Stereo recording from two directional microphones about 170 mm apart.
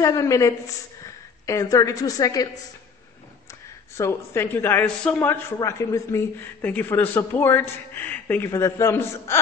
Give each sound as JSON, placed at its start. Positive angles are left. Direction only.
{"t": 0.0, "sound": "a woman's voice", "side_deg": 20}
{"t": 3.9, "sound": "a woman's voice", "side_deg": 15}